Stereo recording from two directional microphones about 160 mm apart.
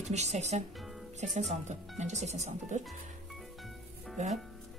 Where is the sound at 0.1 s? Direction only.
45° right (ahead or behind).